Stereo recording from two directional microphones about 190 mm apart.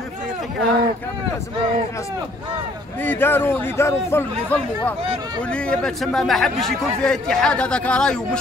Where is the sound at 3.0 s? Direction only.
10° left (ahead or behind).